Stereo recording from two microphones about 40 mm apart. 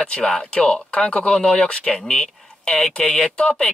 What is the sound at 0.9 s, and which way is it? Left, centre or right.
Speech, left.